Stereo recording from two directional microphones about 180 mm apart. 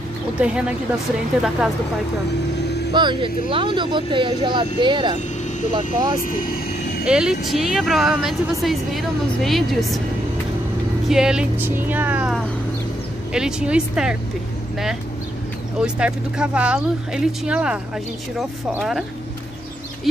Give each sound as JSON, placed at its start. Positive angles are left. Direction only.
{"t": 0.4, "sound": "speech", "side_deg": -5}
{"t": 2.9, "sound": "speech", "side_deg": -25}
{"t": 7.1, "sound": "speech", "side_deg": -5}
{"t": 11.1, "sound": "speech", "side_deg": -5}
{"t": 15.8, "sound": "speech", "side_deg": -5}